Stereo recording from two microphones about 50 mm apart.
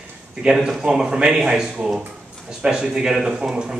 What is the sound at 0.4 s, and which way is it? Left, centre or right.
Speech, centre.